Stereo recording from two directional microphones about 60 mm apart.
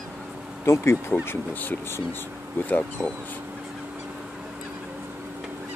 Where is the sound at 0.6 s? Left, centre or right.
Left.